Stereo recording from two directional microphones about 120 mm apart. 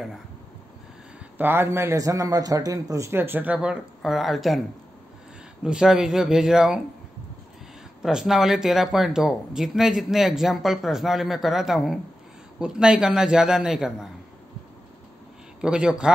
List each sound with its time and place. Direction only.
1.4 s a man's voice: 20° right (ahead or behind); by 4.6 s centre (ahead or behind)
5.6 s speech: 5° right (ahead or behind)
8.0 s speech: 5° right (ahead or behind)
15.6 s speech: 5° right (ahead or behind)